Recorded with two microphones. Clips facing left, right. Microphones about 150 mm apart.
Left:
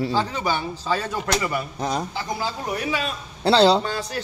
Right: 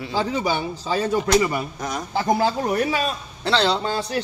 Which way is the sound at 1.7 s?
30° left (ahead or behind).